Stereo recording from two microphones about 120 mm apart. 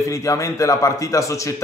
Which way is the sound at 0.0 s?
25° left (ahead or behind).